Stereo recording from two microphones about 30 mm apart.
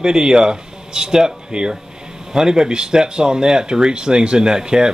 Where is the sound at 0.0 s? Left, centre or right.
Right.